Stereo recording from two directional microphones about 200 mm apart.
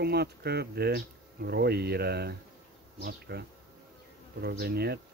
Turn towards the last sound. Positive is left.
turn(degrees=-55)  # may be behind; listen again after turning